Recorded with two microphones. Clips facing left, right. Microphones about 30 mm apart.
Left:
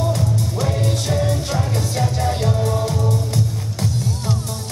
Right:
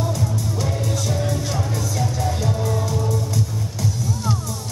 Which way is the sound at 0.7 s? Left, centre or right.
Left.